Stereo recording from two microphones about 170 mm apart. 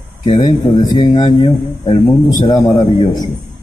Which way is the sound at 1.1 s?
40° left (ahead or behind).